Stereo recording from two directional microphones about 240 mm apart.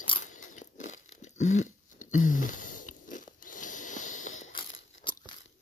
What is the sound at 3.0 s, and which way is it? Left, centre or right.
Biting, left.